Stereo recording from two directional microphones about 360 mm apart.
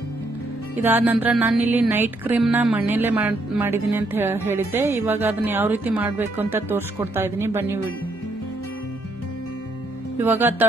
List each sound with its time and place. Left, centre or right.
0.8 s speech: centre
10.2 s speech: centre